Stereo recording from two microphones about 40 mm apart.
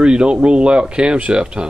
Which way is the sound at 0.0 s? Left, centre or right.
Right.